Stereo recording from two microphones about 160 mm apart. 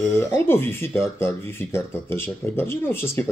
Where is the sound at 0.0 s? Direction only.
15° left (ahead or behind).